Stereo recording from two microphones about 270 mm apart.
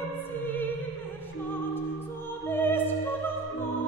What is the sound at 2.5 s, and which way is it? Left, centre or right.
Opera, centre.